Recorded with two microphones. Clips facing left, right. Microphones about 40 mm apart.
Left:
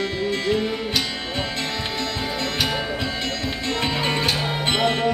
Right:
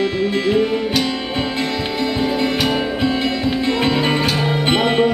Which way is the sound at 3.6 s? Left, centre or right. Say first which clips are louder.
Right 5 dB; centre.